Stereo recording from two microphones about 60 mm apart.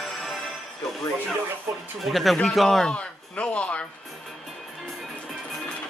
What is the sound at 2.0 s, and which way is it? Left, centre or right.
Speech, centre.